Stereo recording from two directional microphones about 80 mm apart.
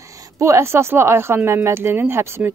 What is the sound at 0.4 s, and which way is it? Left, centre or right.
A woman's voice, right.